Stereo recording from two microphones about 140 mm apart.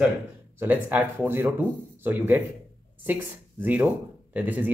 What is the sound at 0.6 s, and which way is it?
Speech, 15° right (ahead or behind).